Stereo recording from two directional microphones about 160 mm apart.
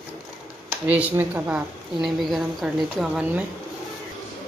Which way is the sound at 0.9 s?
10° right (ahead or behind).